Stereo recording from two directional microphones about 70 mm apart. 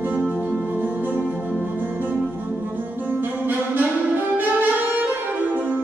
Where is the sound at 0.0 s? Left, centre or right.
Right.